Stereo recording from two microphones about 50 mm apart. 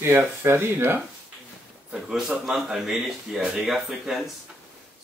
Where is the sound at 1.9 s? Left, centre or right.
Centre.